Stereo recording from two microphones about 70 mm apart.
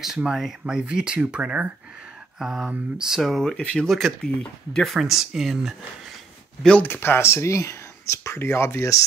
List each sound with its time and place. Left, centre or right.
0.0 s speech: centre
6.8 s speech: left